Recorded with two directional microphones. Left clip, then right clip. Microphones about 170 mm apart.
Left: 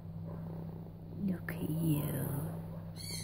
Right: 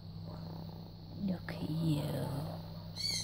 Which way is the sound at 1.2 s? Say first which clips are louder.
Left 1 dB; 10° right (ahead or behind).